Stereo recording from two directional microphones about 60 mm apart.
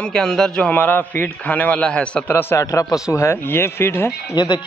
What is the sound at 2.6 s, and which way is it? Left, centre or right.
Speech, left.